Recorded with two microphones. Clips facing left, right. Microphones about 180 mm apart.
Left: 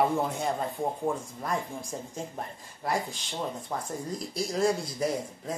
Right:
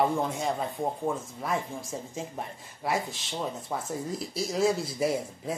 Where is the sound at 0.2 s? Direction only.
Centre (ahead or behind).